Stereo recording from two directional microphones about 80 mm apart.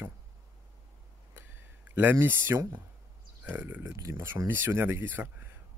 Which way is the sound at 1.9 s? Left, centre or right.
Right.